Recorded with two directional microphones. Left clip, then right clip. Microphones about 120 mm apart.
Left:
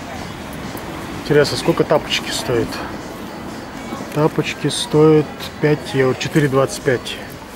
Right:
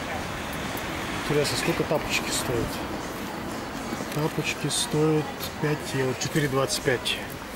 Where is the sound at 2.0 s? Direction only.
20° left (ahead or behind).